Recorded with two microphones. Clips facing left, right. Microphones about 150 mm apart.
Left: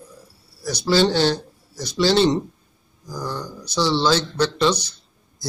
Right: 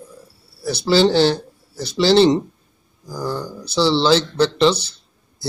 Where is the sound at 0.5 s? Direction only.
30° right (ahead or behind).